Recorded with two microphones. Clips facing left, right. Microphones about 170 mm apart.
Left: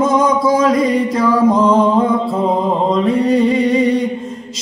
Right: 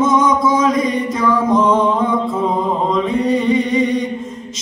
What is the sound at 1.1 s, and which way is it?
Music, 35° left (ahead or behind).